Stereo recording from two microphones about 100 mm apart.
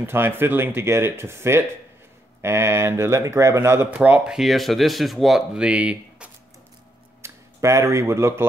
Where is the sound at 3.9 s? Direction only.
15° right (ahead or behind).